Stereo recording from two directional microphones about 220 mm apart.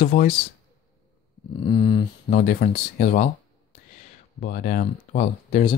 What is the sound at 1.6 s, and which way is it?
Speech, 25° left (ahead or behind).